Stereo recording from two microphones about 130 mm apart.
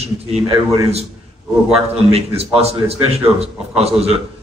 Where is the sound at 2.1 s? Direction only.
50° right (ahead or behind).